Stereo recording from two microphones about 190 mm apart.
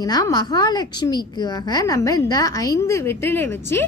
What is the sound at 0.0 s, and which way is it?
A woman's voice, 20° left (ahead or behind).